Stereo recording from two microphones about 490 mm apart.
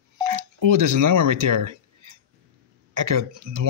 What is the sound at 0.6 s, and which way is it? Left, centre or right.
Speech, right.